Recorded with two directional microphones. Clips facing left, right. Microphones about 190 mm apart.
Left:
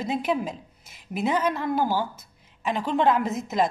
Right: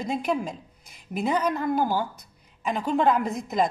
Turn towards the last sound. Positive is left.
turn(degrees=5)  # may be behind; listen again after turning